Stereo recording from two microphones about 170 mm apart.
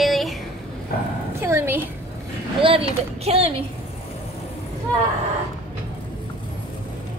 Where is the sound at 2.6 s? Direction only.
35° right (ahead or behind).